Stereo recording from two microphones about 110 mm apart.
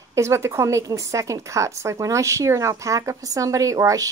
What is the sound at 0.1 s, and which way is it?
A woman's voice, 25° right (ahead or behind).